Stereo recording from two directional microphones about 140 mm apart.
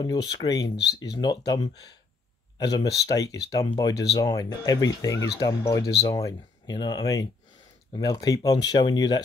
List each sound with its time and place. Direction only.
0.0 s speech: 30° left (ahead or behind)